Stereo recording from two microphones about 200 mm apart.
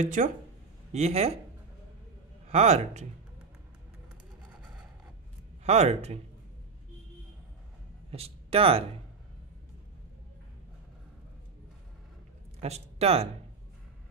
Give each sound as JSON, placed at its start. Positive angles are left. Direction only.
{"t": 0.0, "sound": "speech", "side_deg": -40}
{"t": 2.4, "sound": "speech", "side_deg": -35}
{"t": 5.7, "sound": "speech", "side_deg": -35}
{"t": 8.1, "sound": "speech", "side_deg": -30}
{"t": 12.5, "sound": "speech", "side_deg": -30}